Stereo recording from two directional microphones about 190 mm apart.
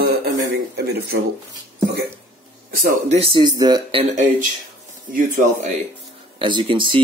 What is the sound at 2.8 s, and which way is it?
Speech, 45° right (ahead or behind).